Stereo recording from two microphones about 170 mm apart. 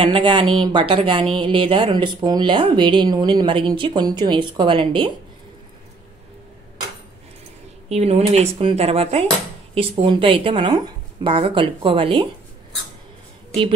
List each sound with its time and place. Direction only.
0.0 s speech: 30° right (ahead or behind)
7.9 s speech: 40° right (ahead or behind)